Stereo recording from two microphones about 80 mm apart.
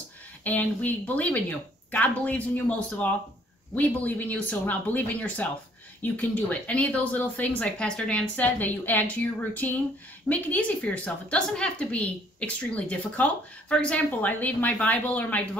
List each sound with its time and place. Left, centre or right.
0.4 s a woman's voice: left